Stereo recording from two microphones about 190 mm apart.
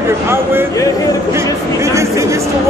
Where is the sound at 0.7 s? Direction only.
15° left (ahead or behind).